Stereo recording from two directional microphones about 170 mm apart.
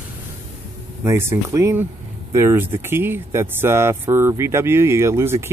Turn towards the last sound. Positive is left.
turn(degrees=-15)  # may be behind; listen again after turning